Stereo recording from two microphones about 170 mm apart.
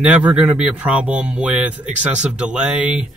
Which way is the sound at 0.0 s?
10° right (ahead or behind).